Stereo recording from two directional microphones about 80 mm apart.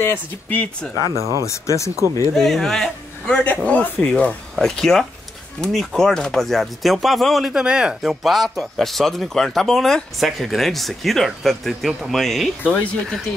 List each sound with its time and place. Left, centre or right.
0.0 s speech: left
1.0 s speech: right
1.4 s speech: left
2.3 s speech: centre